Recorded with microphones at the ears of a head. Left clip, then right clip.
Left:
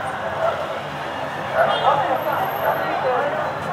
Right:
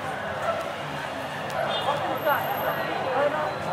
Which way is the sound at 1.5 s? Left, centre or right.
Left.